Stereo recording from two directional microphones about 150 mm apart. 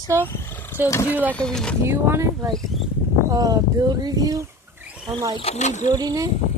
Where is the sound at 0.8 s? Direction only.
20° left (ahead or behind).